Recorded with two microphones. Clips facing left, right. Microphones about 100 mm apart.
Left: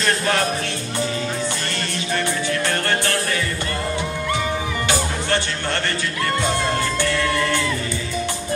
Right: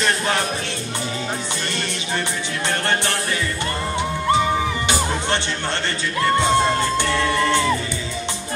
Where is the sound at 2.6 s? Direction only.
20° right (ahead or behind).